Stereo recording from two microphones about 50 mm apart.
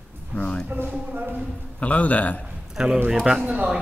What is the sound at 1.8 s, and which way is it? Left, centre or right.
Speech, left.